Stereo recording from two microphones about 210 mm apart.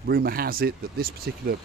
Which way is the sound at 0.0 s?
45° right (ahead or behind).